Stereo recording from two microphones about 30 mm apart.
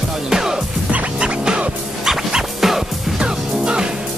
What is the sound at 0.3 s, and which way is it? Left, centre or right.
Music, centre.